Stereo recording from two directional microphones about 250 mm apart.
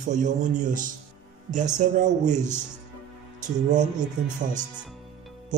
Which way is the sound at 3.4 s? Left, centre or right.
Right.